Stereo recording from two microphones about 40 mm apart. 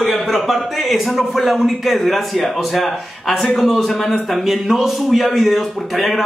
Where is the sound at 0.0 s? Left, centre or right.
Centre.